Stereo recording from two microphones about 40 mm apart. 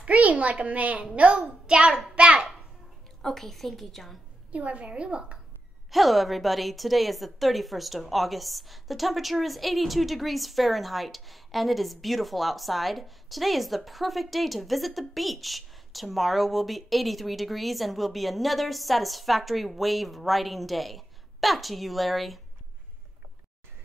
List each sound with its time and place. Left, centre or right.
0.0 s a child's voice: right
3.2 s a woman's voice: centre
4.5 s a woman's voice: right
5.9 s a woman's voice: centre